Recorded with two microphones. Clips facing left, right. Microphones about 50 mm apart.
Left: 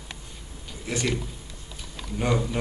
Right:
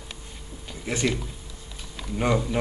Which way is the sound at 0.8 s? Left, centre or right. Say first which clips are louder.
Right 2 dB; right.